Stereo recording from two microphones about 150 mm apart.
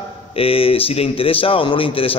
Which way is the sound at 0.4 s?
40° left (ahead or behind).